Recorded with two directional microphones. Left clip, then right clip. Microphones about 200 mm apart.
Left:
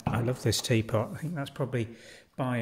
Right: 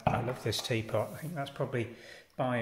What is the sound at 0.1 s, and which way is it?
A man's voice, 50° left (ahead or behind).